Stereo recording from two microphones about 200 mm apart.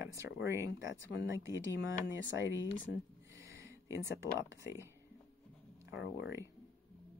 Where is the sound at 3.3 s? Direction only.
15° right (ahead or behind).